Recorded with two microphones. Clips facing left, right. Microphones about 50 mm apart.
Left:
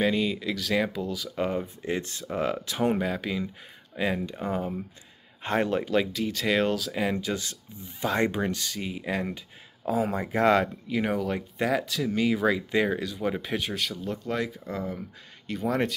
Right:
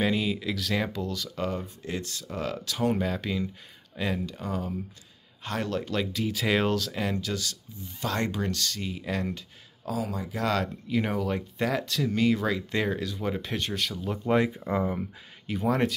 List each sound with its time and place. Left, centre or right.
0.0 s speech: centre; by 3.0 s left
3.0 s speech: centre; by 5.9 s left
6.1 s speech: centre
9.8 s speech: left
10.9 s speech: centre
14.2 s speech: right
15.4 s speech: centre